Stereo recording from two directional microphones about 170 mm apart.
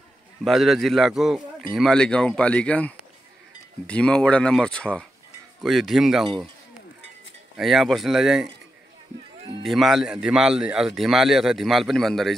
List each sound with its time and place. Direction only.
0.4 s a man's voice: centre (ahead or behind)
6.2 s a man's voice: 30° right (ahead or behind)
7.5 s a man's voice: centre (ahead or behind)
9.6 s a man's voice: centre (ahead or behind)